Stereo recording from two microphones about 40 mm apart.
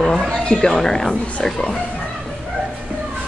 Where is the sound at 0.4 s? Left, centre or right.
Centre.